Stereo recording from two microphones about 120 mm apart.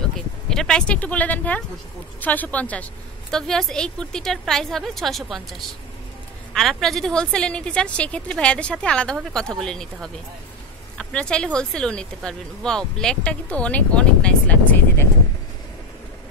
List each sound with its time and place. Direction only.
0.5 s a woman's voice: 5° left (ahead or behind)